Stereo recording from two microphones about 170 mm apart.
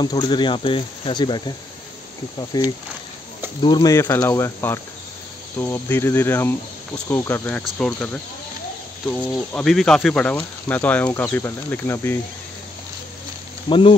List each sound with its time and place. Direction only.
0.0 s speech: 25° left (ahead or behind)
3.6 s speech: 25° left (ahead or behind)
13.7 s speech: 30° left (ahead or behind)